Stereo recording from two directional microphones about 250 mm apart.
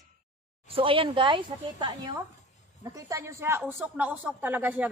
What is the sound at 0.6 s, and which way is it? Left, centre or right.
Speech, right.